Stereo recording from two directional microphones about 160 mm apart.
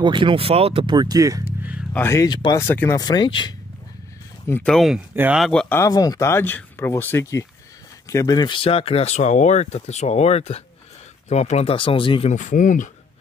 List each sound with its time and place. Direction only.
0.0 s speech: 30° right (ahead or behind)
1.6 s music: 10° right (ahead or behind)
2.0 s speech: 20° left (ahead or behind)
2.6 s speech: 15° left (ahead or behind)
3.0 s speech: 25° left (ahead or behind)
4.5 s speech: 10° left (ahead or behind)
4.7 s speech: centre (ahead or behind)
5.1 s speech: 10° right (ahead or behind)
5.4 s speech: 5° left (ahead or behind)
5.8 s speech: 20° left (ahead or behind)
12.3 s speech: 50° left (ahead or behind)